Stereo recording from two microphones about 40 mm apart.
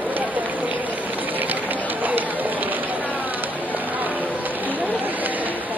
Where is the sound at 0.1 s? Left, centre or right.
Right.